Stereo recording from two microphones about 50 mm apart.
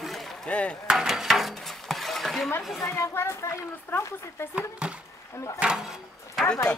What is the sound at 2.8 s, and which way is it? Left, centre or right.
Speech, left.